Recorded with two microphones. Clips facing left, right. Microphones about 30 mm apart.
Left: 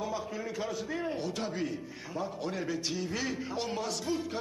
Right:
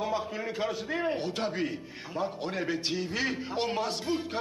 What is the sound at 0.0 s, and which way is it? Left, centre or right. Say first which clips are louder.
A man's voice: right 4 dB; right.